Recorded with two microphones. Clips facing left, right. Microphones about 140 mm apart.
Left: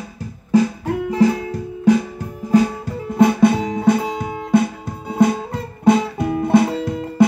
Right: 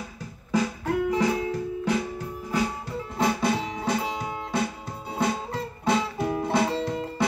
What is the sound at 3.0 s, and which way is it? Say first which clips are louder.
Music: left 11 dB; 55° left (ahead or behind).